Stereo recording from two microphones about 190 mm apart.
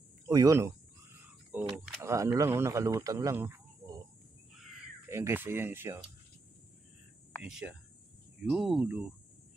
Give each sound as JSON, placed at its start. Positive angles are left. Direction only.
{"t": 0.3, "sound": "a sound", "side_deg": -15}
{"t": 2.0, "sound": "speech", "side_deg": -15}
{"t": 5.1, "sound": "speech", "side_deg": -10}
{"t": 7.4, "sound": "speech", "side_deg": -5}